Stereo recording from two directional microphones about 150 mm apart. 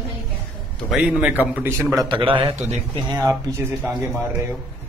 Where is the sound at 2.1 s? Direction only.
35° right (ahead or behind).